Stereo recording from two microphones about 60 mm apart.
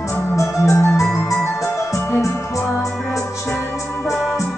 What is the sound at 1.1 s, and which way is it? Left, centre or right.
Music, left.